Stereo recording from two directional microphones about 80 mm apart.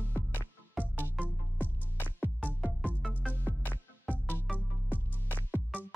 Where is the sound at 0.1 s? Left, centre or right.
Left.